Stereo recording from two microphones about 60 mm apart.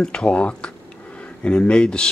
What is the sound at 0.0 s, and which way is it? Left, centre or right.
Speech, centre.